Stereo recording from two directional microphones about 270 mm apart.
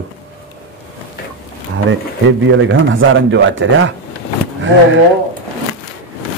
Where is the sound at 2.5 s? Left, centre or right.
Right.